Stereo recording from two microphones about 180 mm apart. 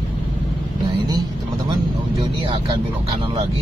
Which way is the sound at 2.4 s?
30° right (ahead or behind).